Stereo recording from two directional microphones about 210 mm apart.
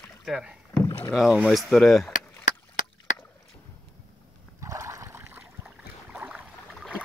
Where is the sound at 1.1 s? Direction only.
Centre (ahead or behind).